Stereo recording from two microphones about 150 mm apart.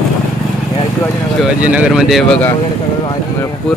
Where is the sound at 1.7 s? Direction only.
5° right (ahead or behind).